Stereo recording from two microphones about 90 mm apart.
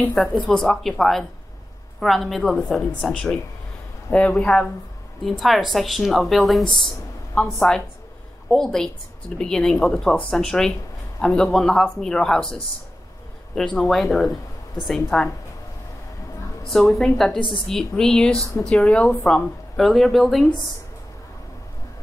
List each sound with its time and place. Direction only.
0.1 s a woman's voice: centre (ahead or behind)
5.4 s a woman's voice: centre (ahead or behind)
6.6 s speech: 60° left (ahead or behind)
7.5 s a woman's voice: 5° left (ahead or behind)
13.7 s a woman's voice: centre (ahead or behind)
16.6 s a woman's voice: centre (ahead or behind)
17.4 s speech: 65° left (ahead or behind)
17.6 s a woman's voice: 5° left (ahead or behind)